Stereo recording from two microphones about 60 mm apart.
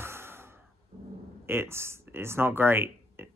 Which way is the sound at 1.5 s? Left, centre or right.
Right.